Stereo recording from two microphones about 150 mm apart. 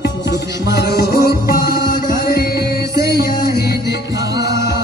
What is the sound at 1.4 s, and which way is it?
Music, 80° left.